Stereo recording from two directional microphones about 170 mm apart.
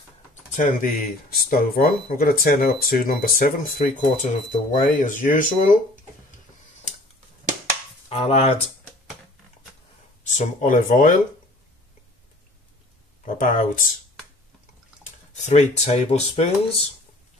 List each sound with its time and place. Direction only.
0.5 s speech: 45° left (ahead or behind)
8.1 s speech: 35° left (ahead or behind)
10.2 s speech: 45° left (ahead or behind)
13.2 s speech: 50° left (ahead or behind)
15.0 s speech: 45° left (ahead or behind)